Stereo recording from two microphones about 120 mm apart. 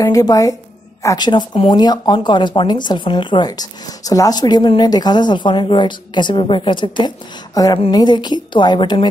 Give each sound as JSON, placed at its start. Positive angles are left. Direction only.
{"t": 0.0, "sound": "a woman's voice", "side_deg": 30}
{"t": 7.5, "sound": "speech", "side_deg": 30}